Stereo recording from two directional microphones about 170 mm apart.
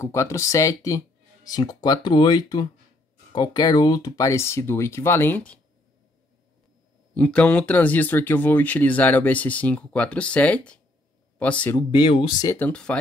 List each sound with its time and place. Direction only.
0.0 s speech: 15° left (ahead or behind)
7.2 s speech: 5° left (ahead or behind)
11.9 s speech: 30° left (ahead or behind)
12.4 s speech: 10° left (ahead or behind)